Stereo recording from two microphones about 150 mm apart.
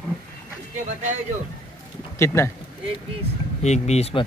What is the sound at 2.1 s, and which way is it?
Speech, 20° left (ahead or behind).